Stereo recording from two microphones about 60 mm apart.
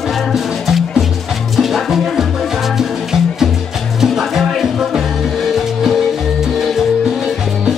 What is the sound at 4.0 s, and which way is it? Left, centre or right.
Music, centre.